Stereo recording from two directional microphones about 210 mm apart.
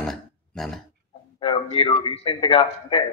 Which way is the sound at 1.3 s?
25° left (ahead or behind).